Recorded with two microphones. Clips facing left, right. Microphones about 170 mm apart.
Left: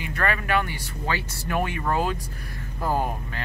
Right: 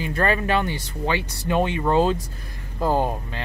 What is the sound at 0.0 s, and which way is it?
Speech, 30° right (ahead or behind).